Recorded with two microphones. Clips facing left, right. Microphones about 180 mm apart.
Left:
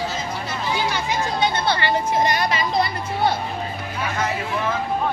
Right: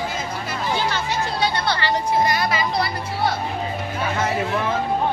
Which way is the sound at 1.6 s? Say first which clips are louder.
Left 1 dB; 20° left (ahead or behind).